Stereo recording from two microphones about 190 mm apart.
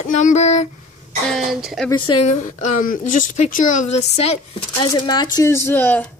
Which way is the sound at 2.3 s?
40° left (ahead or behind).